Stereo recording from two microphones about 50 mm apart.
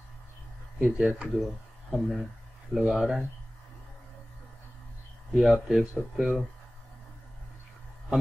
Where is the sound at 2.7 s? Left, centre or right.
Left.